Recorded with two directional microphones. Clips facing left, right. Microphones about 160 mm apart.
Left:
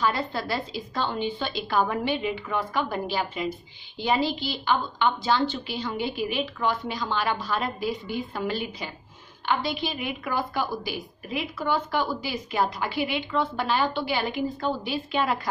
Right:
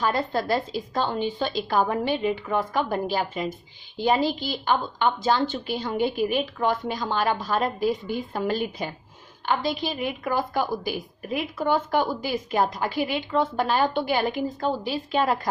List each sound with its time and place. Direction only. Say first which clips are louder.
0.0 s a woman's voice: right 2 dB; 45° right (ahead or behind)